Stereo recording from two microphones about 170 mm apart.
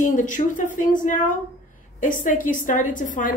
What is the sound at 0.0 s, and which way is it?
A woman's voice, 50° left (ahead or behind).